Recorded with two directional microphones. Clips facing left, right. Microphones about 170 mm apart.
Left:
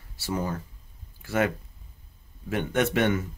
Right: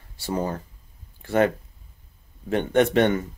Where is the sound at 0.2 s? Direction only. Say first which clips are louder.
Right 3 dB; 20° right (ahead or behind).